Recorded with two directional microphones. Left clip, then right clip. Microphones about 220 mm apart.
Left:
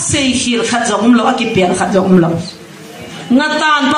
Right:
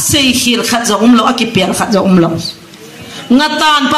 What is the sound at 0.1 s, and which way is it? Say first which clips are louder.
A man's voice: right 4 dB; 55° right (ahead or behind).